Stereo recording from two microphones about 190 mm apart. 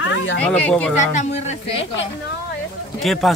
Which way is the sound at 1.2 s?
35° left (ahead or behind).